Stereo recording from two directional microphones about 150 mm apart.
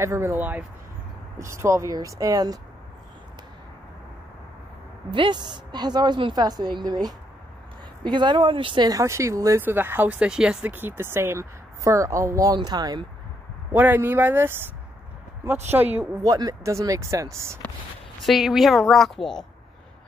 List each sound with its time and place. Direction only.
0.0 s speech: 20° right (ahead or behind)
5.1 s speech: 35° right (ahead or behind)
13.7 s speech: 15° right (ahead or behind)
15.7 s speech: 10° right (ahead or behind)
16.3 s speech: 25° right (ahead or behind)
18.2 s a woman's voice: centre (ahead or behind)